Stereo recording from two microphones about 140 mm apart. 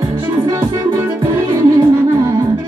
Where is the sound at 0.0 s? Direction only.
30° right (ahead or behind).